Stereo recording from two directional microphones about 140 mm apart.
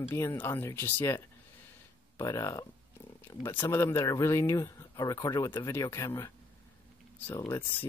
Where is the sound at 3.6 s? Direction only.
20° left (ahead or behind).